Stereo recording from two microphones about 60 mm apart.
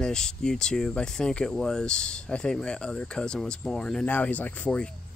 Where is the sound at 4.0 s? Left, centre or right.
Left.